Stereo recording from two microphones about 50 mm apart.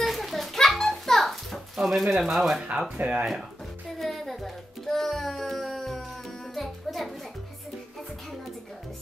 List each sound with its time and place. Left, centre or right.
0.0 s children playing: centre
3.0 s speech: right
4.0 s music: centre